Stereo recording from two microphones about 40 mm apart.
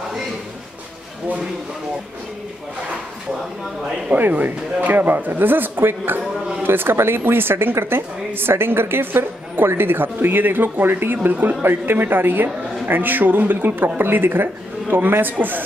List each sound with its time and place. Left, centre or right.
4.4 s a woman's voice: right